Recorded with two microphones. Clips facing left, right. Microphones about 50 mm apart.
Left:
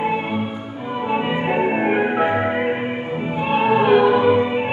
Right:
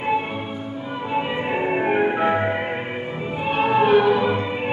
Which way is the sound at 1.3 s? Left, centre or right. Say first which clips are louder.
Left 3 dB; centre.